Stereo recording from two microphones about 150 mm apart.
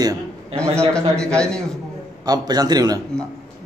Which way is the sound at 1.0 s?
5° left (ahead or behind).